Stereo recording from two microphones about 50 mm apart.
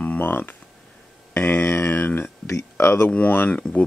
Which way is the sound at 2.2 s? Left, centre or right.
Left.